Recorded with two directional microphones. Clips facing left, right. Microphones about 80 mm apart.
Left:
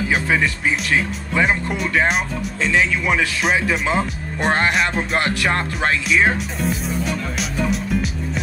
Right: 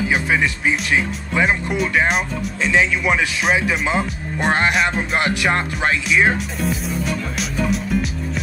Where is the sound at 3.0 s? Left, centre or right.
Centre.